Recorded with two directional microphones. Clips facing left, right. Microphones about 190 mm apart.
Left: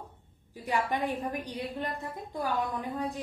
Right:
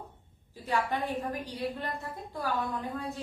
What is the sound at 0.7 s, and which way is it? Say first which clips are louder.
A woman's voice: left 1 dB; 15° left (ahead or behind).